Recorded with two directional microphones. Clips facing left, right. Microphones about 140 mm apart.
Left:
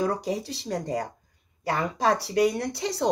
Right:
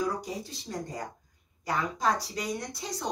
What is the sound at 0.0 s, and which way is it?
Speech, 70° left (ahead or behind).